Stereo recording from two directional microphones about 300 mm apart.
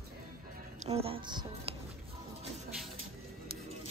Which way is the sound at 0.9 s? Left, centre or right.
Centre.